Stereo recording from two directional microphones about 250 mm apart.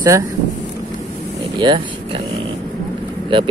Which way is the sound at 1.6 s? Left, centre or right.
Centre.